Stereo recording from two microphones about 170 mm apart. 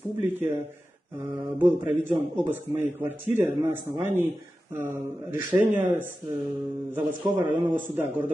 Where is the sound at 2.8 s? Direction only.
10° right (ahead or behind).